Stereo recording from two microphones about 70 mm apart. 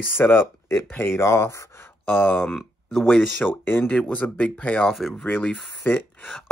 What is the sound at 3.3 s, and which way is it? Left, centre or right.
Speech, left.